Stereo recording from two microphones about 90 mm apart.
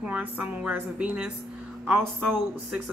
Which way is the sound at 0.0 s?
15° right (ahead or behind).